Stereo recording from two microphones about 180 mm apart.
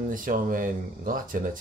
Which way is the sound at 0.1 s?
50° right (ahead or behind).